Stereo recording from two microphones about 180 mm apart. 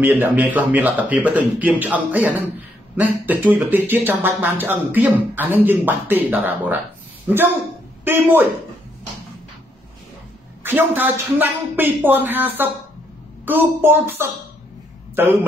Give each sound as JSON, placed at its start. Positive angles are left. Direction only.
{"t": 0.0, "sound": "speech", "side_deg": -10}
{"t": 10.6, "sound": "speech", "side_deg": -10}